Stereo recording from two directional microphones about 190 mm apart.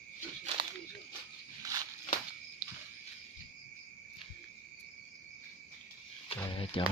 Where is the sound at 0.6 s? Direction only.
25° right (ahead or behind).